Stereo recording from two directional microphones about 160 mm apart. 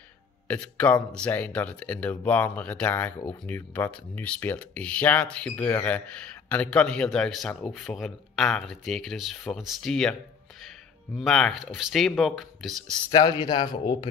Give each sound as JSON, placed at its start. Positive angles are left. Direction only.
{"t": 0.5, "sound": "speech", "side_deg": 10}
{"t": 11.1, "sound": "speech", "side_deg": 5}
{"t": 13.1, "sound": "speech", "side_deg": 25}